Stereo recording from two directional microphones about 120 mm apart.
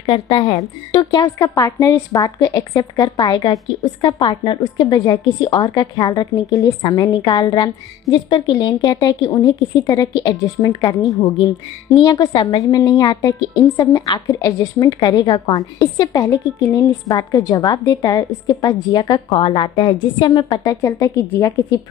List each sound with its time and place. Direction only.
0.0 s a woman's voice: 45° left (ahead or behind)
12.0 s a woman's voice: 35° left (ahead or behind)
19.3 s a woman's voice: 50° left (ahead or behind)
20.8 s a woman's voice: 25° left (ahead or behind)